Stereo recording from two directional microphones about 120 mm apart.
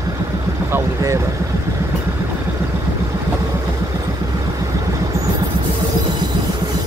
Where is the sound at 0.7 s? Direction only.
25° right (ahead or behind).